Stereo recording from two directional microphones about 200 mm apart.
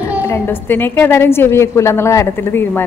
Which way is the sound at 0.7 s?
10° left (ahead or behind).